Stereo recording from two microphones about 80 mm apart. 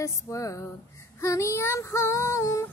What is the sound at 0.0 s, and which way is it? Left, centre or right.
Female singing, left.